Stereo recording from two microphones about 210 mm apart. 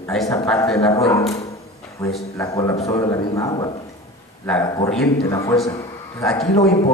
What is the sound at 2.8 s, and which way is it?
A man's voice, 15° left (ahead or behind).